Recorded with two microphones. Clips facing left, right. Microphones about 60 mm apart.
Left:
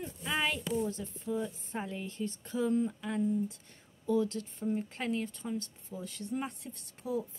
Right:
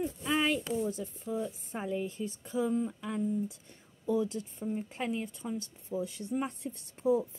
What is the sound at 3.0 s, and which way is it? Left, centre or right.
Speech, centre.